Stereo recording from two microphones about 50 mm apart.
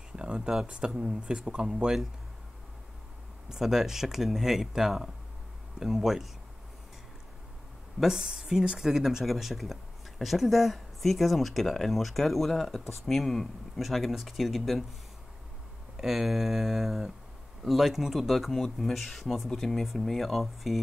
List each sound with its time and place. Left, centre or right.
0.1 s a sound: centre
0.7 s speech: right
3.4 s speech: centre
8.0 s speech: centre
16.0 s speech: centre